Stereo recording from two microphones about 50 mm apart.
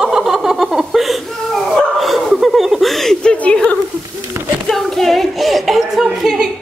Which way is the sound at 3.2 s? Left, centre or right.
Left.